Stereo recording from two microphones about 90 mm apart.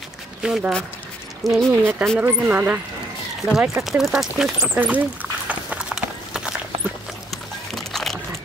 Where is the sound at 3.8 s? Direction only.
5° right (ahead or behind).